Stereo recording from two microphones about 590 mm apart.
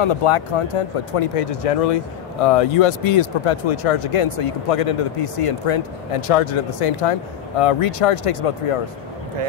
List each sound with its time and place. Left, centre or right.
0.0 s speech: left